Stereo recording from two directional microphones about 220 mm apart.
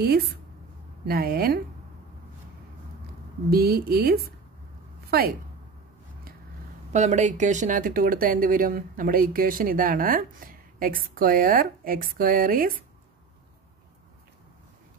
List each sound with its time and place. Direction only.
1.0 s a woman's voice: 45° right (ahead or behind)
3.4 s a woman's voice: 45° right (ahead or behind)
6.9 s speech: 30° right (ahead or behind)